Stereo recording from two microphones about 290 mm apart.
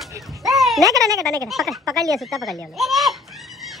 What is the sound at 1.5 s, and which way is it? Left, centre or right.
Speech, centre.